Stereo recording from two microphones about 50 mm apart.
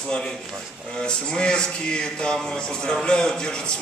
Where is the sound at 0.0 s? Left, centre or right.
Centre.